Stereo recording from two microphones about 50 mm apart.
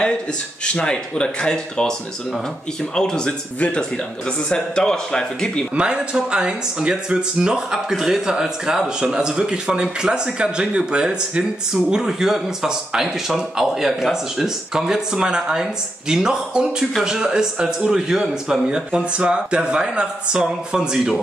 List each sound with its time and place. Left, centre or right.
0.7 s speech: centre
5.8 s a man's voice: centre
18.7 s a man's voice: centre